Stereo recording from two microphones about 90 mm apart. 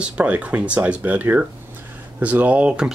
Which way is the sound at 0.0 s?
15° right (ahead or behind).